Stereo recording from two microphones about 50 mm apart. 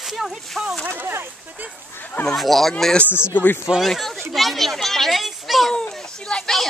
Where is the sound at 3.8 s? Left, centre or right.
Centre.